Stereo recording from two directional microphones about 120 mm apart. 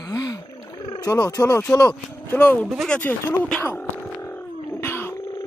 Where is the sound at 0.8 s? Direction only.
35° left (ahead or behind).